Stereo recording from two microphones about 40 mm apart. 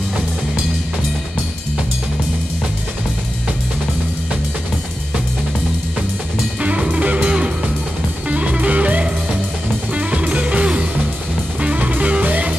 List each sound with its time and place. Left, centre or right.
6.9 s music: right